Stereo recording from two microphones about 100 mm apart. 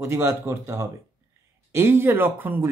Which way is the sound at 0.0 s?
25° right (ahead or behind).